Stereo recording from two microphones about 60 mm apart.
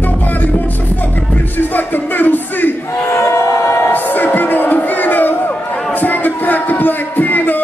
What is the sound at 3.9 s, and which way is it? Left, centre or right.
Music, left.